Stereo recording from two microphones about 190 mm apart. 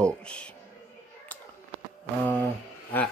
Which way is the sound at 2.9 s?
10° left (ahead or behind).